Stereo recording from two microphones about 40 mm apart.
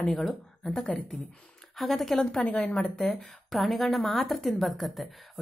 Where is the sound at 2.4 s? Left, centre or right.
Left.